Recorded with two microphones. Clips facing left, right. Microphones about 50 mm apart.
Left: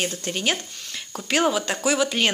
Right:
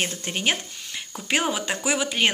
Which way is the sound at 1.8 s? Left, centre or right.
Right.